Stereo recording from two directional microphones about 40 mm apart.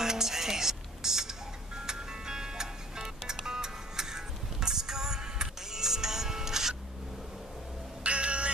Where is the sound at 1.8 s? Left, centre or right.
Centre.